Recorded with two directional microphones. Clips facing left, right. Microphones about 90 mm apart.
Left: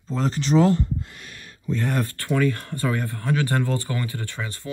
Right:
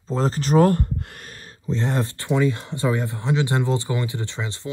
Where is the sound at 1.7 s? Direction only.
25° right (ahead or behind).